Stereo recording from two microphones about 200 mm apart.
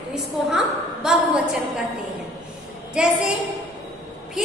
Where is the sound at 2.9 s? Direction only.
5° right (ahead or behind).